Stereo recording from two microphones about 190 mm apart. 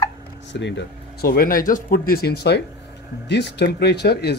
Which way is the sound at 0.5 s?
70° left (ahead or behind).